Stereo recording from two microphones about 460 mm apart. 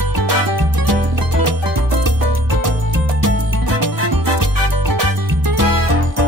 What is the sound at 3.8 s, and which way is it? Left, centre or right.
Music, right.